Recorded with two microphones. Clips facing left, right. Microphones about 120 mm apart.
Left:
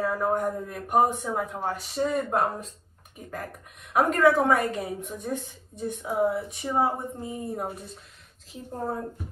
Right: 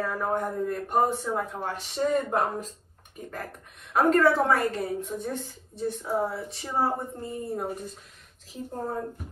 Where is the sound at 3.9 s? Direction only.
15° left (ahead or behind).